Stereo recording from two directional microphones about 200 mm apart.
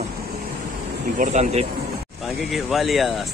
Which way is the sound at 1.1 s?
35° right (ahead or behind).